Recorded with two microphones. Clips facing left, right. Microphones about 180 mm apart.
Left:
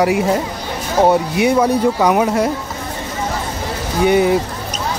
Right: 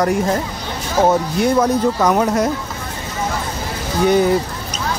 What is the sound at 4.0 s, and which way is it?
Speech, 5° left (ahead or behind).